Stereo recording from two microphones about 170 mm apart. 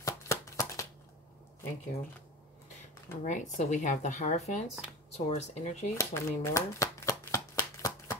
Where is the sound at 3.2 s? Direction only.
45° left (ahead or behind).